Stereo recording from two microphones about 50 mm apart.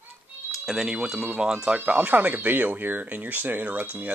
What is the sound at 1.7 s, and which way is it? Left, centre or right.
Speech, right.